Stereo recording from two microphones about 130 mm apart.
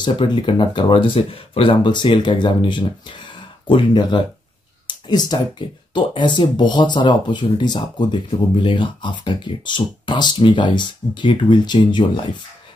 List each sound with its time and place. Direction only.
0.0 s speech: 40° left (ahead or behind)
4.8 s a sound: 35° left (ahead or behind)
5.9 s speech: 35° left (ahead or behind)